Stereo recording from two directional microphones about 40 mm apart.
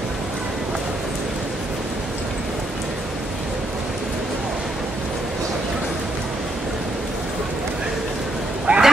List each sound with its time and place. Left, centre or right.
8.7 s bow-wow: right